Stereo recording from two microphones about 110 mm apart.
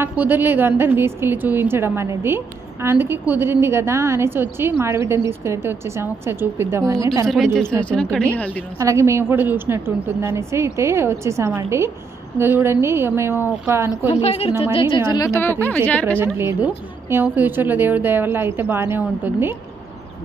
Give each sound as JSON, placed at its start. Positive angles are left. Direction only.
{"t": 0.0, "sound": "a woman's voice", "side_deg": -20}
{"t": 7.8, "sound": "a woman's voice", "side_deg": 10}
{"t": 8.7, "sound": "a woman's voice", "side_deg": -30}
{"t": 14.0, "sound": "a woman's voice", "side_deg": 70}
{"t": 14.6, "sound": "a woman's voice", "side_deg": 55}
{"t": 15.1, "sound": "a woman's voice", "side_deg": 30}
{"t": 15.4, "sound": "a woman's voice", "side_deg": 15}
{"t": 16.3, "sound": "a woman's voice", "side_deg": -20}